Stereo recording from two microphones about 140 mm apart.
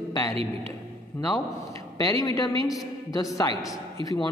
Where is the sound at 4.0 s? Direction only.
40° right (ahead or behind).